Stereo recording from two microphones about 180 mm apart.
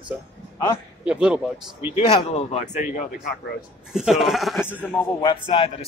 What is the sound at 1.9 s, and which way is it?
A man's voice, 35° left (ahead or behind).